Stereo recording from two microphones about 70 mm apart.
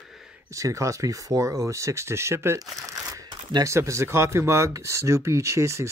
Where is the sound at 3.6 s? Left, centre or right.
Right.